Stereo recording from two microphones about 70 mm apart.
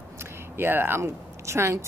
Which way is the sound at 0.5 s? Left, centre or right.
Right.